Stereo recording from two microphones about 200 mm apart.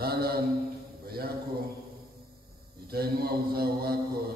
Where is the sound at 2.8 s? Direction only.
50° right (ahead or behind).